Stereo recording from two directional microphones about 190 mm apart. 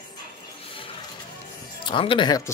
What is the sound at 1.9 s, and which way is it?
Speech, 25° left (ahead or behind).